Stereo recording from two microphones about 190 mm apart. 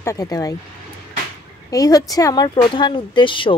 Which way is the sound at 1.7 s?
20° left (ahead or behind).